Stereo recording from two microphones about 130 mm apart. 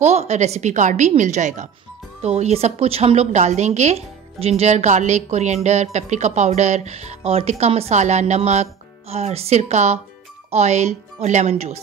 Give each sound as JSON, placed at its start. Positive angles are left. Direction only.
{"t": 0.0, "sound": "a woman's voice", "side_deg": -55}
{"t": 2.2, "sound": "a woman's voice", "side_deg": -55}